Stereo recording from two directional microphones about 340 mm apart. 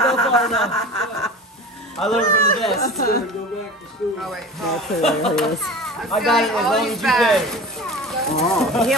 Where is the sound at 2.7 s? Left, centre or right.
Left.